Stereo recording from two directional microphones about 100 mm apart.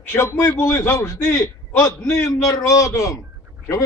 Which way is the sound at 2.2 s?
40° left (ahead or behind).